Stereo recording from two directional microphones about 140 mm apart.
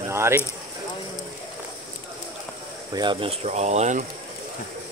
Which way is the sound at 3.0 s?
35° right (ahead or behind).